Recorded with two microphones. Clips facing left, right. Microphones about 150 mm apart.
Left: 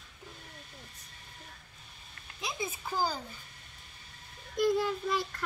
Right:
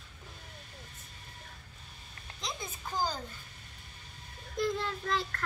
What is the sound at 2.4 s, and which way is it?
Speech, 10° left (ahead or behind).